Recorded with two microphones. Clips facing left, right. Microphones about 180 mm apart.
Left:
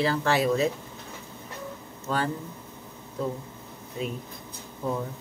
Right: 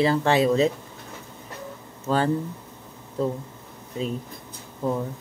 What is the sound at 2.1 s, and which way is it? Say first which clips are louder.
Speech: right 5 dB; 35° right (ahead or behind).